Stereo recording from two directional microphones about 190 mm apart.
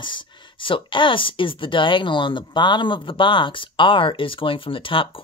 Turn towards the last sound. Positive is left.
turn(degrees=25)  # may be behind; listen again after turning